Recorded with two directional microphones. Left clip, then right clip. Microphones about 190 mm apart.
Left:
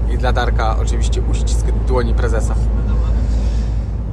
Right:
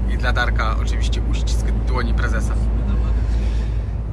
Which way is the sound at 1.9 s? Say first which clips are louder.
Left 6 dB; 20° left (ahead or behind).